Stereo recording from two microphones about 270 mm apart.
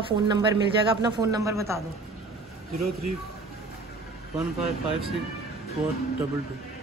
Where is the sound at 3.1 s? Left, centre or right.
Right.